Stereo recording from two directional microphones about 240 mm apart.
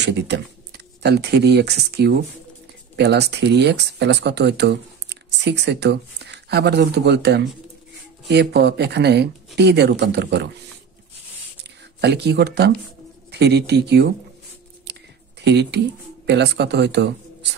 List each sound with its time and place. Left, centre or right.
0.0 s speech: right
12.0 s speech: right
15.4 s speech: right